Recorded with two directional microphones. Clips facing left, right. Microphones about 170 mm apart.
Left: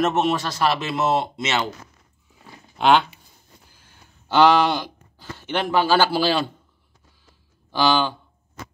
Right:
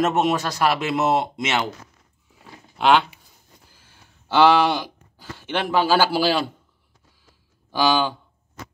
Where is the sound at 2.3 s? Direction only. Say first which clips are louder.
Even; centre (ahead or behind).